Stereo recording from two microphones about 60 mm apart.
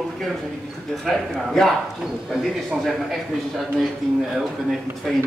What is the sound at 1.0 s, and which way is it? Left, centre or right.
Speech, centre.